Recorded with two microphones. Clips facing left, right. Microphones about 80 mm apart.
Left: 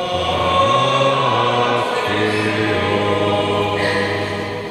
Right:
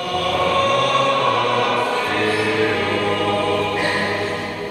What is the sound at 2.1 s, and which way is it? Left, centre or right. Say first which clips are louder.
Choir: left 1 dB; centre.